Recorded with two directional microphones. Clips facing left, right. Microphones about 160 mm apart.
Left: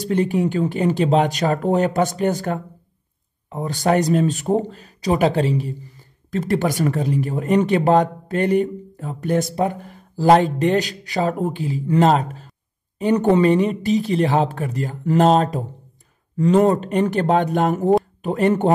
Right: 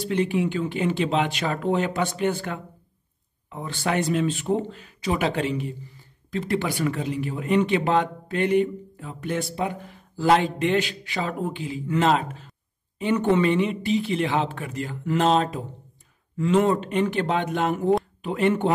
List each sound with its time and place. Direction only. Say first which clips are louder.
0.0 s speech: left 4 dB; 40° left (ahead or behind)